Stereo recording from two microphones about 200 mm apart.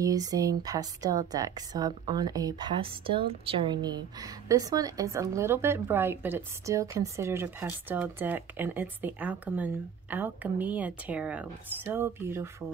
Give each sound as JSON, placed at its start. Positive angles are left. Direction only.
{"t": 0.0, "sound": "speech", "side_deg": -20}